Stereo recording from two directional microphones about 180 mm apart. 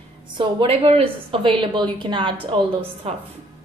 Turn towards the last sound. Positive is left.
turn(degrees=-35)  # may be behind; listen again after turning